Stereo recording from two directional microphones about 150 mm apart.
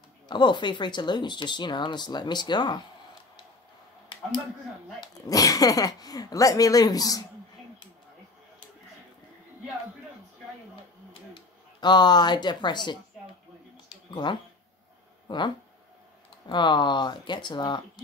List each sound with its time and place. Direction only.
0.3 s speech: 30° left (ahead or behind)
5.0 s speech: 25° left (ahead or behind)
11.8 s speech: 30° left (ahead or behind)
15.2 s speech: 30° left (ahead or behind)